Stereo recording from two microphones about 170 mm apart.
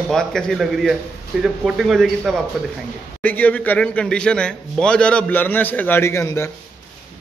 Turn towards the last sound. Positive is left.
turn(degrees=15)  # may be behind; listen again after turning